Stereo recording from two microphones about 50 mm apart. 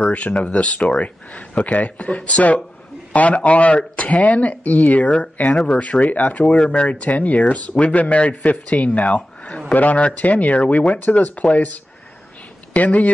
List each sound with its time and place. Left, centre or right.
0.4 s speech: left